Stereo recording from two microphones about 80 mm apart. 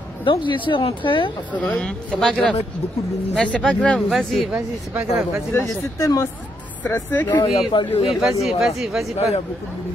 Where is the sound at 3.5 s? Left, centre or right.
Centre.